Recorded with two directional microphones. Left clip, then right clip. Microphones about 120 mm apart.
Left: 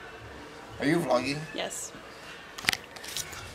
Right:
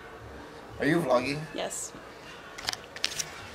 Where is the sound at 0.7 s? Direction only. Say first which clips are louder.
Right 1 dB; 10° left (ahead or behind).